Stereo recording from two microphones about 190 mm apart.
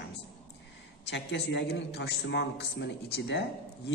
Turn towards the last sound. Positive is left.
turn(degrees=65)  # may be behind; listen again after turning